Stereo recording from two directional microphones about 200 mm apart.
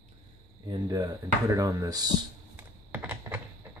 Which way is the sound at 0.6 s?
20° right (ahead or behind).